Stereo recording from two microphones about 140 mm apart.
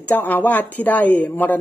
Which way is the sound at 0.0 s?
10° left (ahead or behind).